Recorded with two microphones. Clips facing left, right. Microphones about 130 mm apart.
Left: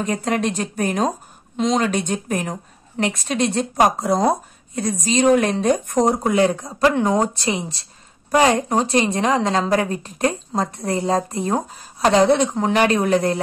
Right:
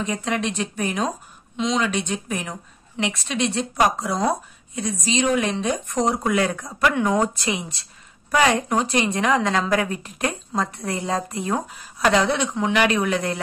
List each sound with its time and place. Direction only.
0.0 s a woman's voice: 45° left (ahead or behind)